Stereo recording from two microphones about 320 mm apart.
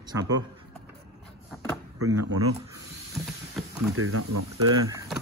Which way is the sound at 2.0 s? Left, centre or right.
Right.